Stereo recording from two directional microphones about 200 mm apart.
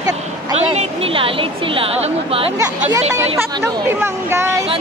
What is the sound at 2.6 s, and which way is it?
Speech, 15° right (ahead or behind).